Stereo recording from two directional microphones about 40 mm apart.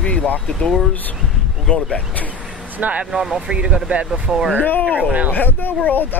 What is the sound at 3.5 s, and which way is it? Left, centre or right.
Speech, right.